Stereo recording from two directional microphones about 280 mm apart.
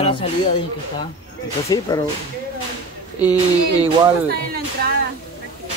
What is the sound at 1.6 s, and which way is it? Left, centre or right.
Speech, centre.